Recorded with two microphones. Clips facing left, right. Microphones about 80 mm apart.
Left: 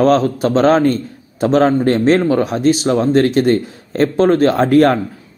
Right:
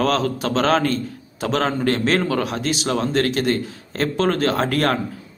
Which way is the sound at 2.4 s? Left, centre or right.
Left.